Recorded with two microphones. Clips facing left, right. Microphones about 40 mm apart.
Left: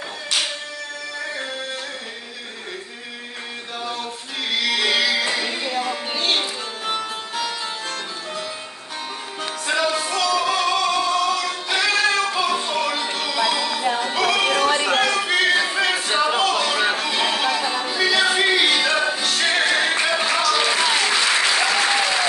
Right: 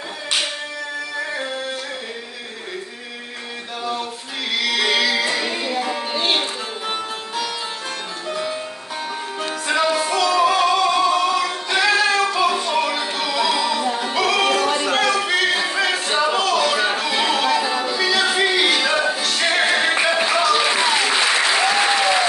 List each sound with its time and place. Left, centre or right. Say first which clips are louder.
4.5 s music: right 1 dB; centre
6.1 s music: right 1 dB; centre
9.7 s music: right 2 dB; centre
20.9 s applause: right 1 dB; centre